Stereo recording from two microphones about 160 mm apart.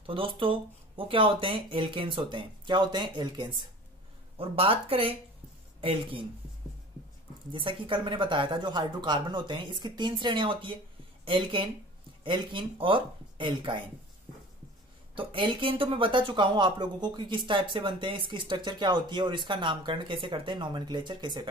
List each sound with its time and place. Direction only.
0.0 s speech: 35° right (ahead or behind)
7.8 s speech: 30° right (ahead or behind)
15.1 s speech: 35° right (ahead or behind)